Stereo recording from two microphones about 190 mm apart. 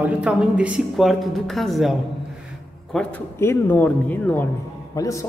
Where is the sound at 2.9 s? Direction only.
10° left (ahead or behind).